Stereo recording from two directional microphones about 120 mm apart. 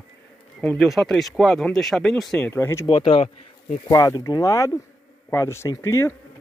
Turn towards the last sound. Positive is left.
turn(degrees=25)  # may be behind; listen again after turning